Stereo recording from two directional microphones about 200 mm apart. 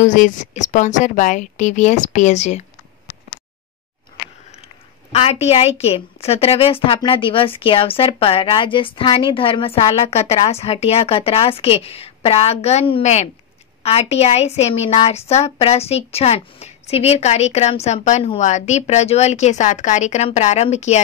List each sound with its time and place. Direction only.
0.0 s a woman's voice: 40° left (ahead or behind)
5.1 s a woman's voice: 30° left (ahead or behind)